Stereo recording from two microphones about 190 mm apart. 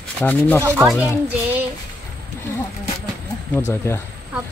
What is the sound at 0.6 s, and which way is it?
A child's voice, 10° right (ahead or behind).